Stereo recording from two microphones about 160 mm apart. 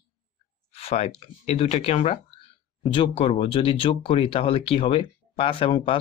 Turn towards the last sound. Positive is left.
turn(degrees=35)  # may be behind; listen again after turning